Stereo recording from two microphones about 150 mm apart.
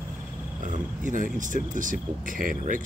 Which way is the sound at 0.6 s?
60° right (ahead or behind).